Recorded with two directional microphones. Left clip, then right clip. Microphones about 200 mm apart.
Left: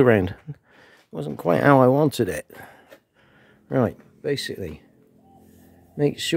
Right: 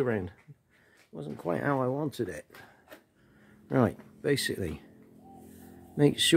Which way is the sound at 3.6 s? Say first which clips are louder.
Left 5 dB; 20° left (ahead or behind).